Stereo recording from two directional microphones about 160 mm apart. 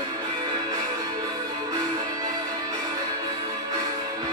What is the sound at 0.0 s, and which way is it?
Music, 25° right (ahead or behind).